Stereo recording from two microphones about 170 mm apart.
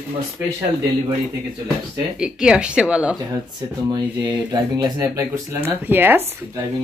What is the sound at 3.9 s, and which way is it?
Speech, 25° right (ahead or behind).